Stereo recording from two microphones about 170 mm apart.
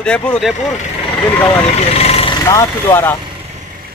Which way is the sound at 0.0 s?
5° left (ahead or behind).